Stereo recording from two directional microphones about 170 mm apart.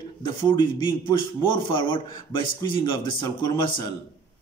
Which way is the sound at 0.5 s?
25° left (ahead or behind).